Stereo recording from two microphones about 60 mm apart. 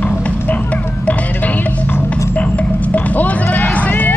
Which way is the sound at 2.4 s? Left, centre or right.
Left.